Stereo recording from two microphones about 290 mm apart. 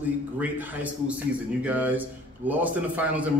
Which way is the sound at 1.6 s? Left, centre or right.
Centre.